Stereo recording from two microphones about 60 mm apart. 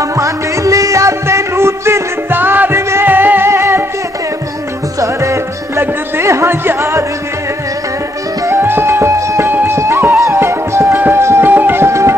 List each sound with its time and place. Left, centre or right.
0.2 s music: right
5.0 s music: right
5.8 s a sound: right
6.8 s music: right
8.5 s music: right